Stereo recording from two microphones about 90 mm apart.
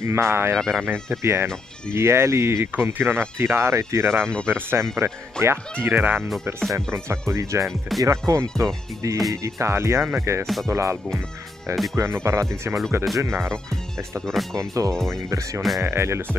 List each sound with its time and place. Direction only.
0.0 s speech: 30° right (ahead or behind)
0.6 s speech: centre (ahead or behind)
1.2 s speech: 30° right (ahead or behind)
6.7 s speech: 35° right (ahead or behind)
10.4 s speech: 5° left (ahead or behind)
10.7 s speech: 30° right (ahead or behind)
14.2 s speech: 5° left (ahead or behind)
14.6 s speech: 35° right (ahead or behind)